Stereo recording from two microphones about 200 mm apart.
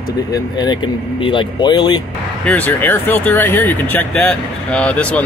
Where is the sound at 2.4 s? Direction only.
5° left (ahead or behind).